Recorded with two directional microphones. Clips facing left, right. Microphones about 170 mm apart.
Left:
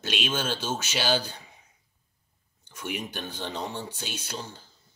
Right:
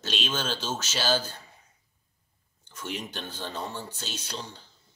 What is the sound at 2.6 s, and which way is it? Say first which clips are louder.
Speech: left 2 dB; 10° left (ahead or behind).